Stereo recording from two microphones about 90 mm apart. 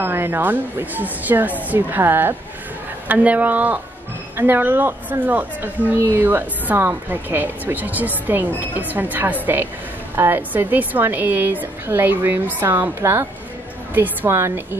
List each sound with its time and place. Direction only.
0.0 s speech: 25° right (ahead or behind)